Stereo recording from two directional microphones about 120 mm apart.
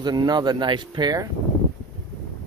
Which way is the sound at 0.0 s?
35° right (ahead or behind).